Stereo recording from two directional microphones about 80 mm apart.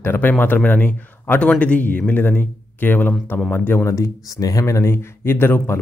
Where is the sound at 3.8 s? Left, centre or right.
Left.